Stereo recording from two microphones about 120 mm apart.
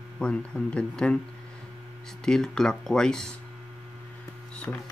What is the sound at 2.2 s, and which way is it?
Speech, 5° left (ahead or behind).